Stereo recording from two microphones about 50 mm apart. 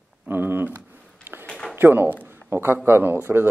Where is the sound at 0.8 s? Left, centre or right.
Right.